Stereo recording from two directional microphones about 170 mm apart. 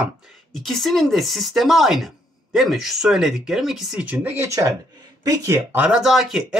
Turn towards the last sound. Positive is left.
turn(degrees=0)  # may be behind; listen again after turning